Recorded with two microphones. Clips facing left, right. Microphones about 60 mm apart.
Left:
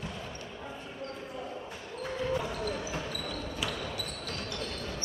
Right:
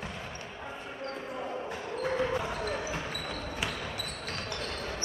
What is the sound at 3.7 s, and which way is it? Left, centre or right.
Basketball bounce, right.